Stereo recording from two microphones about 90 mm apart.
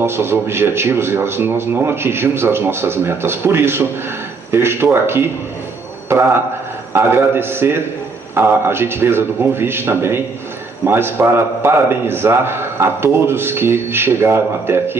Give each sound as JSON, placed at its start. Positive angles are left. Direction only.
{"t": 0.0, "sound": "a man's voice", "side_deg": -25}